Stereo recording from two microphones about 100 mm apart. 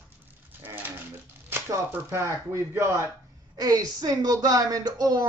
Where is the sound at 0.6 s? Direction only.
20° right (ahead or behind).